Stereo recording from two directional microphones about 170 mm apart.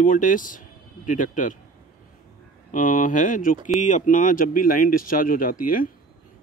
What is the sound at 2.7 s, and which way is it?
Speech, 50° left (ahead or behind).